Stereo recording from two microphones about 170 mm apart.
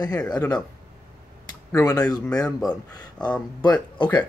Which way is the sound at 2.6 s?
5° left (ahead or behind).